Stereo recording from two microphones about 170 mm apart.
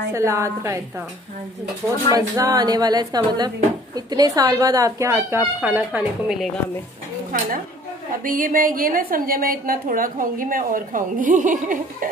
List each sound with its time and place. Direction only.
0.1 s a woman's voice: 15° right (ahead or behind)
2.1 s a woman's voice: 20° right (ahead or behind); by 6.6 s centre (ahead or behind)
8.2 s a woman's voice: 50° right (ahead or behind)